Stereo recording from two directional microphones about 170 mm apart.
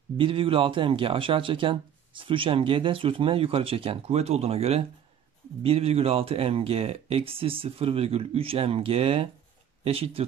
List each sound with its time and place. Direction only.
0.2 s speech: 30° right (ahead or behind)